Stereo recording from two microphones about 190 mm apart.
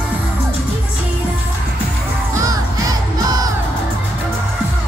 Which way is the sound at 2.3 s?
20° right (ahead or behind).